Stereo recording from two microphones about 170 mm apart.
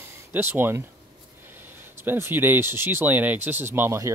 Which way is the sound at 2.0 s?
10° right (ahead or behind).